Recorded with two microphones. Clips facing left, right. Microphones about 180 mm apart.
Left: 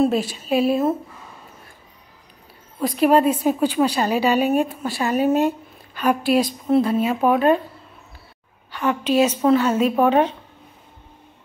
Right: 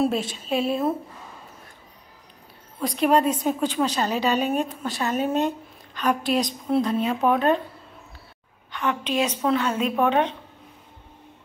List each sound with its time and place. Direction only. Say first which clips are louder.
0.0 s speech: left 4 dB; centre (ahead or behind)
3.0 s a woman's voice: left 4 dB; 5° left (ahead or behind)
8.7 s speech: left 6 dB; 5° left (ahead or behind)
9.8 s a woman's voice: left 5 dB; 35° left (ahead or behind)